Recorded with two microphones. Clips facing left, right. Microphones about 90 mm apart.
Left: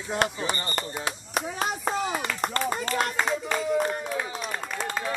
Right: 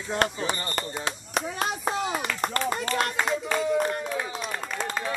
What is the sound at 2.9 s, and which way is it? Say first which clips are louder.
Speech: even; 5° left (ahead or behind).